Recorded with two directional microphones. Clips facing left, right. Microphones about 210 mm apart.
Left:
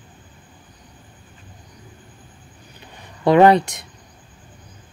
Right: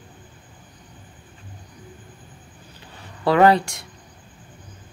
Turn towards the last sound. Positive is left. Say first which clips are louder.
# left 3 dB
turn(degrees=20)  # may be behind; listen again after turning